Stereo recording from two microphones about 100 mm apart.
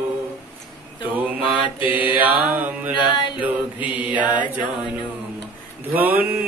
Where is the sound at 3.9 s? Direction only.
15° right (ahead or behind).